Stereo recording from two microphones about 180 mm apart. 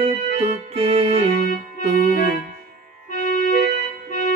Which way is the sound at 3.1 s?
45° left (ahead or behind).